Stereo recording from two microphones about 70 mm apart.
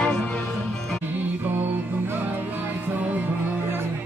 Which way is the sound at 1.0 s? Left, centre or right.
Right.